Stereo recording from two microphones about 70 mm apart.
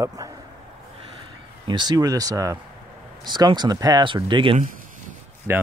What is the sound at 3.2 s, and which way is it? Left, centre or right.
Speech, right.